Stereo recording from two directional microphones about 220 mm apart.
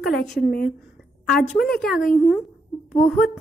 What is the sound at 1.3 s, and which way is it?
A woman's voice, centre (ahead or behind).